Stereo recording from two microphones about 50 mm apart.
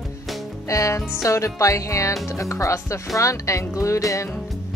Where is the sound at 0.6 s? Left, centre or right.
Left.